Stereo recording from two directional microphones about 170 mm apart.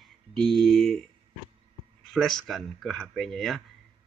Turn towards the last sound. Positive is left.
turn(degrees=0)  # may be behind; listen again after turning